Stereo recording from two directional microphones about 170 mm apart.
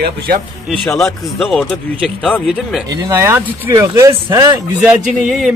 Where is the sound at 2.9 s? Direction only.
20° right (ahead or behind).